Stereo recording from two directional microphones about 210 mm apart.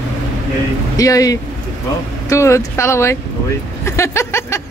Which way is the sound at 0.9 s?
15° left (ahead or behind).